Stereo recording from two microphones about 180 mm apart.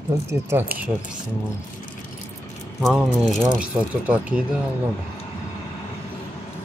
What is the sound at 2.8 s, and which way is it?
Speech, centre (ahead or behind).